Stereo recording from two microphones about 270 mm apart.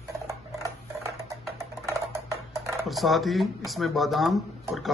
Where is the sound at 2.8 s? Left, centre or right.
Centre.